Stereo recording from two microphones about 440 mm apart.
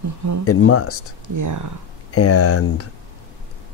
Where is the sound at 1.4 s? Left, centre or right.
Right.